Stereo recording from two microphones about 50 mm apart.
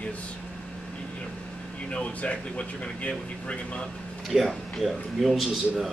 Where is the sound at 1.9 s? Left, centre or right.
Left.